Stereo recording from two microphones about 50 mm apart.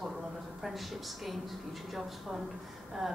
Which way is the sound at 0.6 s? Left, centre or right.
Centre.